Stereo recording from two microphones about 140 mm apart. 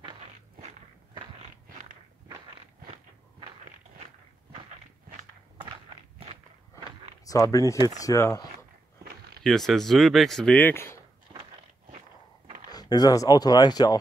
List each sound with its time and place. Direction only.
7.2 s speech: 25° left (ahead or behind)
9.4 s speech: 5° left (ahead or behind)
12.7 s speech: 30° left (ahead or behind)